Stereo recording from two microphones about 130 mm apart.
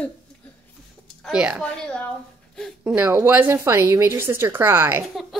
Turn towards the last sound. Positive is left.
turn(degrees=0)  # may be behind; listen again after turning